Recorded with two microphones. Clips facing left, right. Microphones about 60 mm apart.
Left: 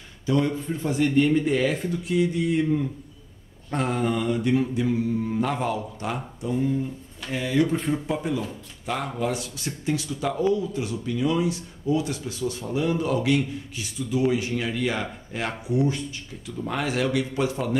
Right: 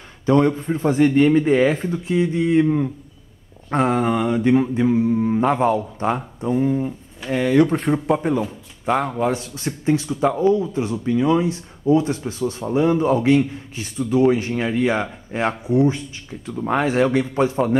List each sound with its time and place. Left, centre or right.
0.3 s speech: right
8.4 s a man's voice: right